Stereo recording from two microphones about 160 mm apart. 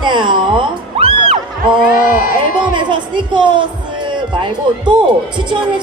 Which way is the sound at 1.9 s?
60° left (ahead or behind).